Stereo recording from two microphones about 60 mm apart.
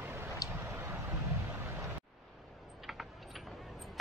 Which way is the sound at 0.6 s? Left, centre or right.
Right.